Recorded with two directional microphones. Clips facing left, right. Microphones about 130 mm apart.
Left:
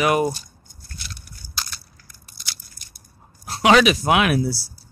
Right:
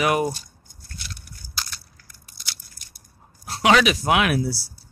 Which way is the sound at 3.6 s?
15° left (ahead or behind).